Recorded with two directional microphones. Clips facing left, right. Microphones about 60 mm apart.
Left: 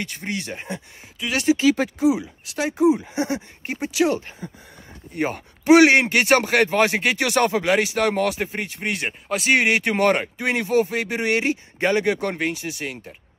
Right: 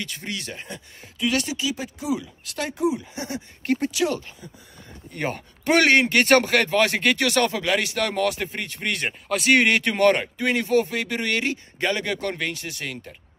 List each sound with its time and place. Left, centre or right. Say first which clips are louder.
0.0 s speech: left 3 dB; left
1.7 s speech: left 11 dB; left
2.0 s speech: left 6 dB; left
3.6 s speech: right 10 dB; centre
3.9 s speech: left 4 dB; left
5.7 s speech: left 6 dB; centre
5.9 s speech: even; left
7.0 s speech: even; centre
7.2 s speech: left 3 dB; left
8.5 s speech: left 1 dB; centre
9.9 s speech: even; left
12.6 s speech: left 3 dB; centre